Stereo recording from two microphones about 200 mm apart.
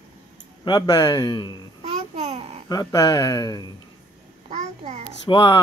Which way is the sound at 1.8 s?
35° right (ahead or behind).